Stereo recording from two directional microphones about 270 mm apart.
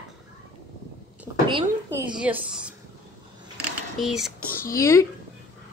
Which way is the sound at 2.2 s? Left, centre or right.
Centre.